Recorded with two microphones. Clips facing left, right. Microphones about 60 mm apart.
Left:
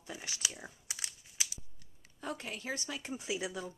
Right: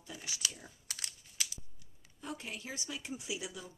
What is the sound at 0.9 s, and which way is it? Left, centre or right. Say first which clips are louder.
Crumpling: left 1 dB; centre.